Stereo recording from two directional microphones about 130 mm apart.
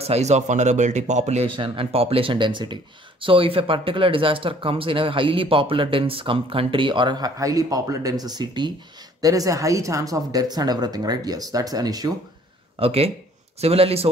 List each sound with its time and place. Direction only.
0.0 s speech: 55° right (ahead or behind); by 12.1 s 30° right (ahead or behind)
12.7 s speech: 50° right (ahead or behind)